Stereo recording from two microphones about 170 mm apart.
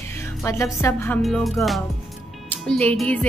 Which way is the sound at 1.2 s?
Centre (ahead or behind).